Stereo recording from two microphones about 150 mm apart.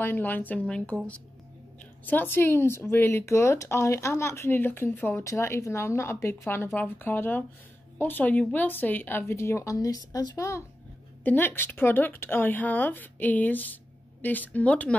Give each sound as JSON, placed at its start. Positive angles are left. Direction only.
{"t": 0.0, "sound": "speech", "side_deg": 10}